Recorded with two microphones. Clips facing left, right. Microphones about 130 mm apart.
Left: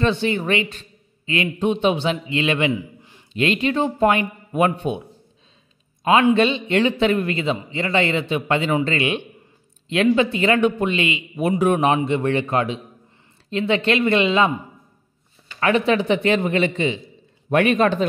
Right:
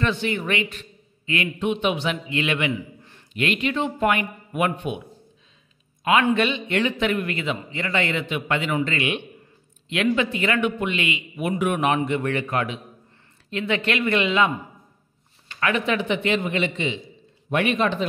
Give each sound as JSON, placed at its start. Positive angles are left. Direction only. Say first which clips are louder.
{"t": 0.0, "sound": "speech", "louder": "left 4 dB", "side_deg": 30}
{"t": 3.0, "sound": "a sound", "louder": "left 1 dB", "side_deg": 15}
{"t": 3.3, "sound": "speech", "louder": "left 4 dB", "side_deg": 30}
{"t": 6.3, "sound": "speech", "louder": "left 4 dB", "side_deg": 30}
{"t": 15.6, "sound": "a man's voice", "louder": "left 5 dB", "side_deg": 35}